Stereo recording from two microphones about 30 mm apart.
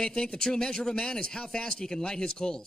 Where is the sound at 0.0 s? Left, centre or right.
Left.